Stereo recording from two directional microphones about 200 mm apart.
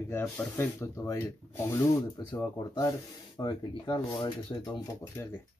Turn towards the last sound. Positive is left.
turn(degrees=10)  # may be behind; listen again after turning